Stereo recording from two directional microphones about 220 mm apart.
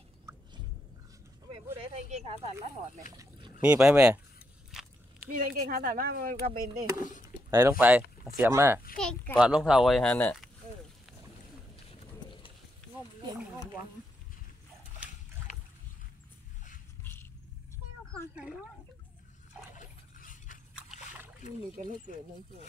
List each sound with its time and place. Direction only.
1.5 s a sound: 25° right (ahead or behind)
3.1 s boat: 20° right (ahead or behind)
3.6 s speech: 5° right (ahead or behind)
4.6 s biting: centre (ahead or behind)
5.6 s speech: 40° right (ahead or behind)
7.5 s speech: 10° right (ahead or behind)
8.9 s speech: 5° left (ahead or behind)
11.9 s horse: 25° left (ahead or behind)
15.5 s boat: 35° left (ahead or behind)
17.0 s vehicle: 10° left (ahead or behind)
18.1 s speech: 5° right (ahead or behind)
20.2 s a sound: 40° left (ahead or behind)
21.4 s speech: 35° left (ahead or behind)